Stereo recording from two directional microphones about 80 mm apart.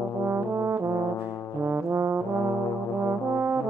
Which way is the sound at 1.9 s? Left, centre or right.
Right.